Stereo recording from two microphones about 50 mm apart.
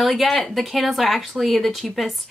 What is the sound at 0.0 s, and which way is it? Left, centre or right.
A woman's voice, centre.